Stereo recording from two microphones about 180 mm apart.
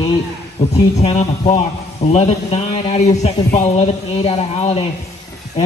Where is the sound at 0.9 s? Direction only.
40° left (ahead or behind).